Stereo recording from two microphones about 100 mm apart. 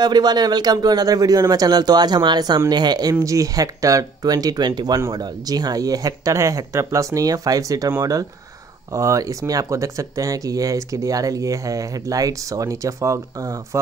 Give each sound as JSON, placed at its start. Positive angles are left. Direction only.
{"t": 0.0, "sound": "speech", "side_deg": -45}